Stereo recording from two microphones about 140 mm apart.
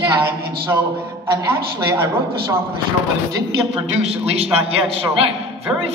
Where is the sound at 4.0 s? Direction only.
45° right (ahead or behind).